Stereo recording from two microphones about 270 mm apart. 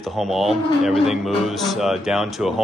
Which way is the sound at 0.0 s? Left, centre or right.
Centre.